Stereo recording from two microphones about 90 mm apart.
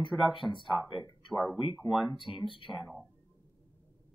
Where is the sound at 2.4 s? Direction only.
65° left (ahead or behind).